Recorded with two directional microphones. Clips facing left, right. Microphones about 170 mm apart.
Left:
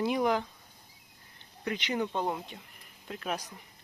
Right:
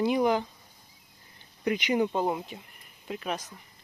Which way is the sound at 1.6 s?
10° right (ahead or behind).